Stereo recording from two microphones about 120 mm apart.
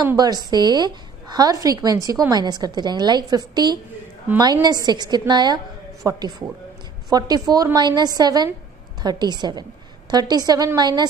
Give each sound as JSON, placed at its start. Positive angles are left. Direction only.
{"t": 0.0, "sound": "a woman's voice", "side_deg": -35}